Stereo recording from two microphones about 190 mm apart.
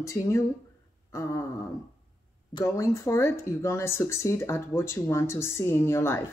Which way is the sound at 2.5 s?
15° left (ahead or behind).